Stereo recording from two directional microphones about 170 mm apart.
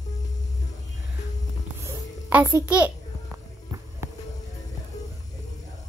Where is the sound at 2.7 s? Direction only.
10° right (ahead or behind).